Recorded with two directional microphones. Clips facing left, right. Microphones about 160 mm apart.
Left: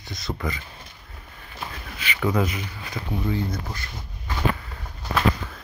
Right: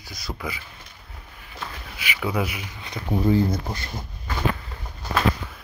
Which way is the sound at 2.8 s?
30° right (ahead or behind).